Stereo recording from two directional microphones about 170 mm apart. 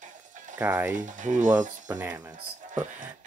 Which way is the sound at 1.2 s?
50° right (ahead or behind).